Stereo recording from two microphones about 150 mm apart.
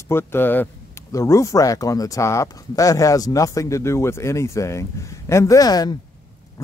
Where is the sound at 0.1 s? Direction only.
15° left (ahead or behind).